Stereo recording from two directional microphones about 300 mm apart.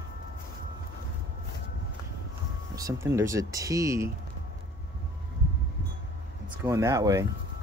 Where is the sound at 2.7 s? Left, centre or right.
Centre.